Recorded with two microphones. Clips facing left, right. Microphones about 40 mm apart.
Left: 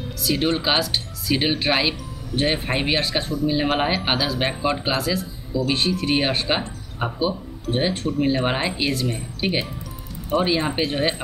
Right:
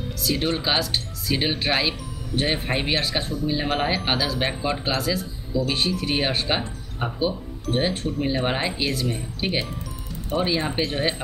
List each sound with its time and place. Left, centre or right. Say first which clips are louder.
0.2 s speech: left 3 dB; centre